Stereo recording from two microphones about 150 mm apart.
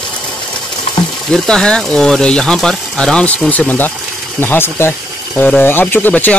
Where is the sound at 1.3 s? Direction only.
5° left (ahead or behind).